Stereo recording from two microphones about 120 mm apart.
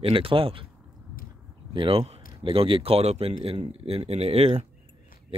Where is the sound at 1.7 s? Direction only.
45° right (ahead or behind).